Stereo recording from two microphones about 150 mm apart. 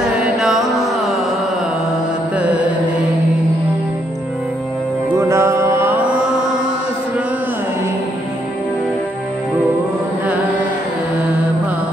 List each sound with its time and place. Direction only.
0.0 s mantra: centre (ahead or behind)
2.3 s music: 10° right (ahead or behind)
5.1 s music: 20° right (ahead or behind)